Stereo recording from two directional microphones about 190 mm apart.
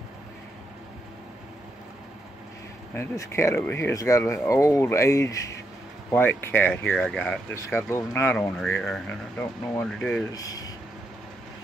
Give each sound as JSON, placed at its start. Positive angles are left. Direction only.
{"t": 2.9, "sound": "speech", "side_deg": 15}
{"t": 10.3, "sound": "speech", "side_deg": 20}